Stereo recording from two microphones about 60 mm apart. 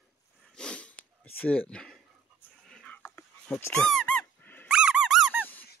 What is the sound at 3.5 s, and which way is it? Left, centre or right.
Speech, centre.